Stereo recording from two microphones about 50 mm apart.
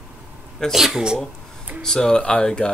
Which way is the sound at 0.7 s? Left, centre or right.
Centre.